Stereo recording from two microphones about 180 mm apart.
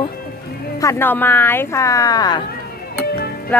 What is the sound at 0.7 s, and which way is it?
Speech, 15° left (ahead or behind).